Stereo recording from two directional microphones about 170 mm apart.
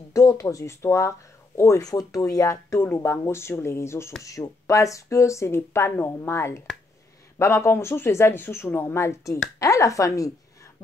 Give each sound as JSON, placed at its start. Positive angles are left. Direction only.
{"t": 0.1, "sound": "a woman's voice", "side_deg": 20}